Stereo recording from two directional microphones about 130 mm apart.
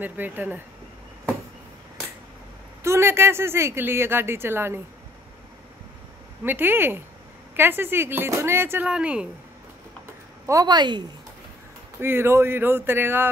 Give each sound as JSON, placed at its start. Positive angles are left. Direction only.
{"t": 0.0, "sound": "speech", "side_deg": -15}
{"t": 2.8, "sound": "speech", "side_deg": -20}
{"t": 6.4, "sound": "speech", "side_deg": -15}
{"t": 10.4, "sound": "speech", "side_deg": -25}
{"t": 12.0, "sound": "speech", "side_deg": -20}